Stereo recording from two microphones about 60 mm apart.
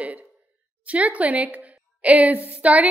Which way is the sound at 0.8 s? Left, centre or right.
Right.